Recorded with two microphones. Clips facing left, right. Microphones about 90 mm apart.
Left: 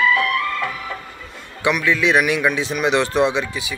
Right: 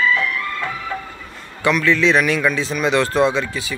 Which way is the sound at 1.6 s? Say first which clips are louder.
Right 2 dB; 15° left (ahead or behind).